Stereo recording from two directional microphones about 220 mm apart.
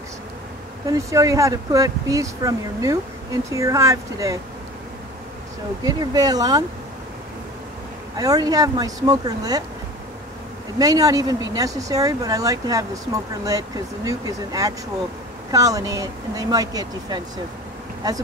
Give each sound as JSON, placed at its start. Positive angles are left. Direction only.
{"t": 0.8, "sound": "speech", "side_deg": -15}
{"t": 5.9, "sound": "speech", "side_deg": -15}
{"t": 8.2, "sound": "speech", "side_deg": -15}
{"t": 10.8, "sound": "speech", "side_deg": -15}